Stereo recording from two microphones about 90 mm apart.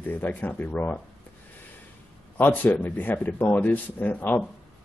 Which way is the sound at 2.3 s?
20° left (ahead or behind).